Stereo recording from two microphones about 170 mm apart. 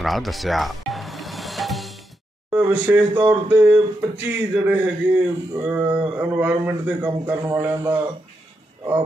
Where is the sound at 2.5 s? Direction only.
10° right (ahead or behind).